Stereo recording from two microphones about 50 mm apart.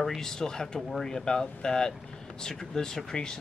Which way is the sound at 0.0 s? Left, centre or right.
Centre.